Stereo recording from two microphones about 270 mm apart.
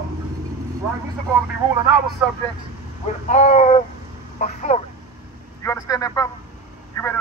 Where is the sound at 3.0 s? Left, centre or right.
Left.